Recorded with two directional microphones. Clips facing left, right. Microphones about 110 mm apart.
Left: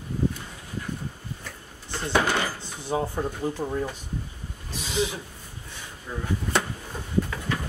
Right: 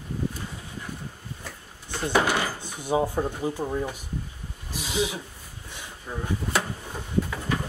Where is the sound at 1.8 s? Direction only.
15° right (ahead or behind).